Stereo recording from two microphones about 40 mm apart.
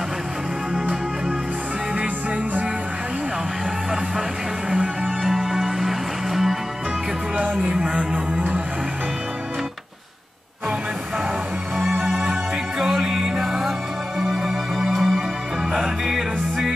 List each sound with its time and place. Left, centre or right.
5.0 s music: centre
7.7 s music: right
12.0 s music: centre
12.7 s music: centre